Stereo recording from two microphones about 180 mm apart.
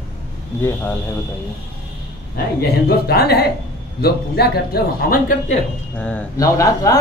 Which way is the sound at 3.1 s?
60° left (ahead or behind).